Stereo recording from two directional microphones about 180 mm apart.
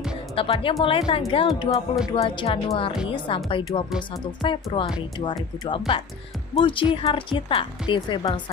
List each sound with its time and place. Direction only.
0.4 s a woman's voice: 30° left (ahead or behind)